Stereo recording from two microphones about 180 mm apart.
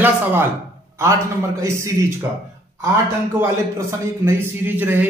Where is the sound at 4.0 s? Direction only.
10° right (ahead or behind).